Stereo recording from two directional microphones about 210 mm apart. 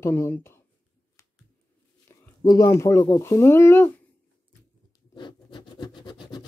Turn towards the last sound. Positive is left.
turn(degrees=20)  # may be behind; listen again after turning